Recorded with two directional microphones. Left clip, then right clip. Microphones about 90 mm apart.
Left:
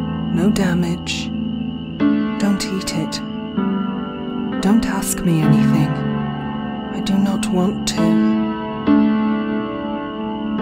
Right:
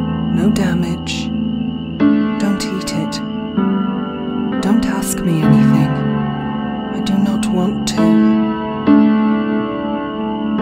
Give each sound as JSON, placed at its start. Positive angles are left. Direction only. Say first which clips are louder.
{"t": 0.4, "sound": "speech", "louder": "right 1 dB", "side_deg": 0}
{"t": 2.0, "sound": "music", "louder": "right 4 dB", "side_deg": -35}
{"t": 3.5, "sound": "music", "louder": "right 4 dB", "side_deg": -35}
{"t": 4.6, "sound": "speech", "louder": "left 1 dB", "side_deg": 0}
{"t": 7.1, "sound": "speech", "louder": "right 1 dB", "side_deg": 0}
{"t": 8.0, "sound": "music", "louder": "right 4 dB", "side_deg": -35}